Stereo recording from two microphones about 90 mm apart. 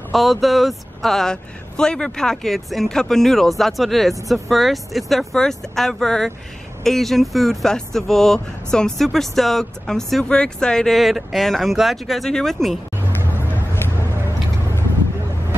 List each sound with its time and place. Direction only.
0.1 s speech: centre (ahead or behind)
13.5 s vehicle: 25° left (ahead or behind)